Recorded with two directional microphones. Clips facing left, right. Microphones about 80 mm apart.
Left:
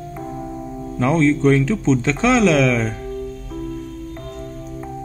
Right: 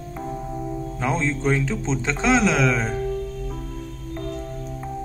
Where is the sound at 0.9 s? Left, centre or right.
Centre.